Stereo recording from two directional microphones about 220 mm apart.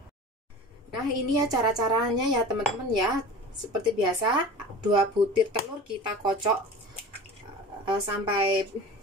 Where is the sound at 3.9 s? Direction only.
20° right (ahead or behind).